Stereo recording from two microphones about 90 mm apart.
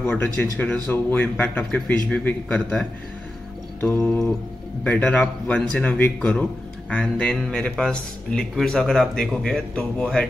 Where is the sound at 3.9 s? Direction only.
5° left (ahead or behind).